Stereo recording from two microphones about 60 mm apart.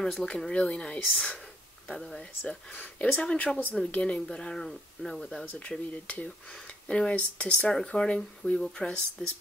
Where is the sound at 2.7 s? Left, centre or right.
Left.